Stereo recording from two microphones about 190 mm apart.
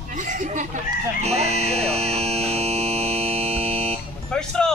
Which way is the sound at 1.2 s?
35° right (ahead or behind).